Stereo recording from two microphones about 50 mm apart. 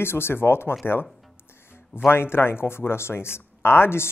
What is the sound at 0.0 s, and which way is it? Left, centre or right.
Speech, left.